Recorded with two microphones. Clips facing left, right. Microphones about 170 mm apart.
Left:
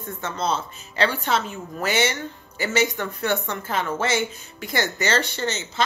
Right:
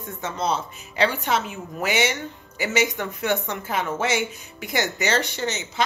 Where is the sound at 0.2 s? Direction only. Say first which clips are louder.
Even; 15° right (ahead or behind).